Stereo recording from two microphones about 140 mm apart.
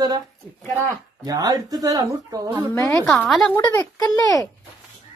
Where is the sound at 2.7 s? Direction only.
20° left (ahead or behind).